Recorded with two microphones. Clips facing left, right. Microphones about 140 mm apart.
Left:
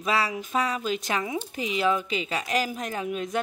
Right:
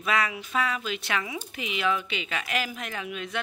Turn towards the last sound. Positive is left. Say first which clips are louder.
# left 5 dB
turn(degrees=40)  # may be behind; listen again after turning